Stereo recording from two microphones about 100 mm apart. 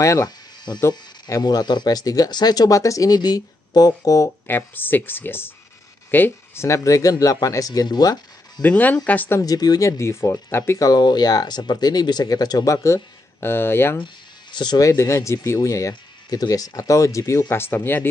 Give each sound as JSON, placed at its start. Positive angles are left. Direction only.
{"t": 0.0, "sound": "speech", "side_deg": 30}
{"t": 4.5, "sound": "speech", "side_deg": 20}
{"t": 8.6, "sound": "speech", "side_deg": 15}
{"t": 9.4, "sound": "speech", "side_deg": 40}
{"t": 10.9, "sound": "speech", "side_deg": 45}
{"t": 14.0, "sound": "speech", "side_deg": 50}